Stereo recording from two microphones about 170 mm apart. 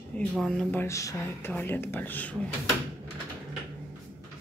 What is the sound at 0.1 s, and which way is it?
Speech, 5° left (ahead or behind).